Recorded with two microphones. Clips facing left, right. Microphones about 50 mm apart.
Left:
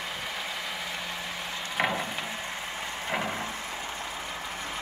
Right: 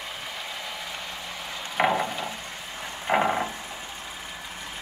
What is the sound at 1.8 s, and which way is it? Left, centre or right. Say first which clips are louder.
Wood: right 5 dB; centre.